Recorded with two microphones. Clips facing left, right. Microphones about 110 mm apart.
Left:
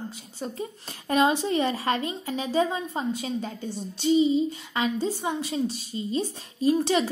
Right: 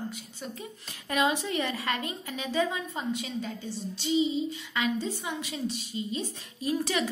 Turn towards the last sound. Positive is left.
turn(degrees=30)  # may be behind; listen again after turning